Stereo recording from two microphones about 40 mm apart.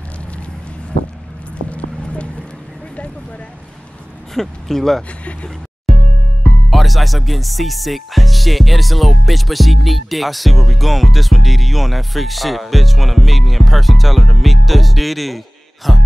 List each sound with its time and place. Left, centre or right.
1.7 s clip-clop: left
4.3 s speech: centre
6.7 s speech: centre